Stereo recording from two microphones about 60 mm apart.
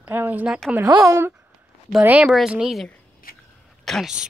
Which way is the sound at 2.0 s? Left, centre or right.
Right.